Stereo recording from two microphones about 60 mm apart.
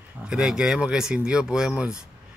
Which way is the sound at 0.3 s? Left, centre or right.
Centre.